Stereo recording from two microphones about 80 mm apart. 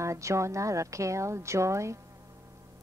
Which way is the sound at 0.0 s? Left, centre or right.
Right.